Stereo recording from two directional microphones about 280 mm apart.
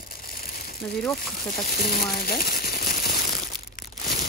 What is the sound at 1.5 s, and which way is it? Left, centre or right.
Speech, left.